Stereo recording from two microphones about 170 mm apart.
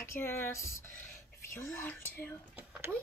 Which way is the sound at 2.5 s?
10° right (ahead or behind).